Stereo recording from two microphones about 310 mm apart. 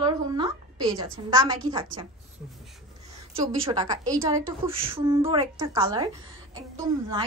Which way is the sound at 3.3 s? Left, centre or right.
Centre.